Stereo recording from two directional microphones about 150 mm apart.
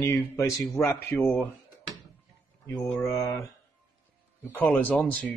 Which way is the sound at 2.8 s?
20° left (ahead or behind).